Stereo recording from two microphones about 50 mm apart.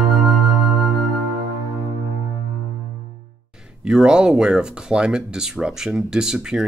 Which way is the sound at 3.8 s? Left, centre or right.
Centre.